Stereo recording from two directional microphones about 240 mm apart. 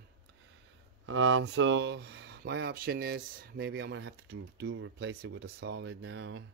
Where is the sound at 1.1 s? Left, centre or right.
Right.